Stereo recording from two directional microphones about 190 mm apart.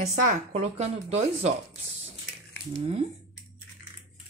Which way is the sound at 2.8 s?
30° right (ahead or behind).